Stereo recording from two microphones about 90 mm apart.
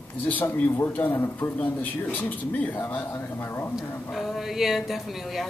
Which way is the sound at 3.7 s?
Centre (ahead or behind).